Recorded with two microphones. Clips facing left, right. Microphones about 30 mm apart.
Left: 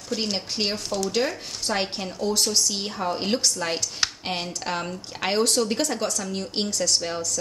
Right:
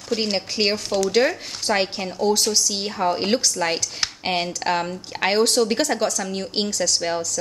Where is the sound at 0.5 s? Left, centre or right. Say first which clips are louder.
Right 5 dB; right.